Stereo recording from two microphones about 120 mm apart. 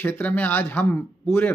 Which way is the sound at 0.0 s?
15° left (ahead or behind).